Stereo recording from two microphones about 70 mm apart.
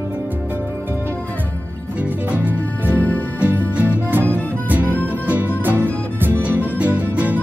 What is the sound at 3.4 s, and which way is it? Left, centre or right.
Music, right.